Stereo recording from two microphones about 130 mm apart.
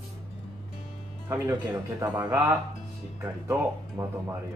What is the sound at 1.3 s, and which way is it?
Speech, 20° right (ahead or behind).